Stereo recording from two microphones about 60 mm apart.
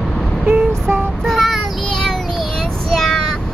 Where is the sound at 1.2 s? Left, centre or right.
Centre.